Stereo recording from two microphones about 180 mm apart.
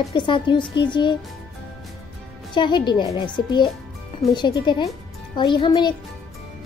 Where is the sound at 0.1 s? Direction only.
25° left (ahead or behind).